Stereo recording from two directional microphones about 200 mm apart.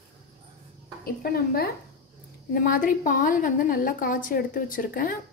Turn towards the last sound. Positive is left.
turn(degrees=45)  # may be behind; listen again after turning